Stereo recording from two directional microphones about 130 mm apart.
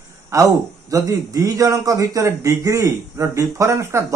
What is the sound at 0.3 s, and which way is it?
A man's voice, 25° right (ahead or behind).